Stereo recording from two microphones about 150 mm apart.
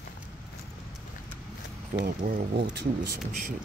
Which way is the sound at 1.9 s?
60° right (ahead or behind).